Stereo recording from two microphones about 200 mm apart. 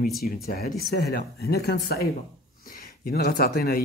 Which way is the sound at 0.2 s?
50° left (ahead or behind).